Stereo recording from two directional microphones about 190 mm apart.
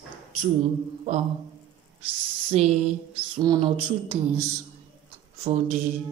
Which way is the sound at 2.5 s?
35° right (ahead or behind).